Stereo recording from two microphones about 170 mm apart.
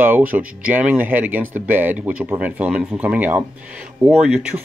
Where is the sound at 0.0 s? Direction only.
10° right (ahead or behind).